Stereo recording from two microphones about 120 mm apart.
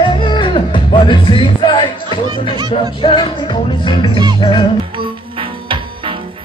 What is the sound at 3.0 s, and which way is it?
Music, 40° left (ahead or behind).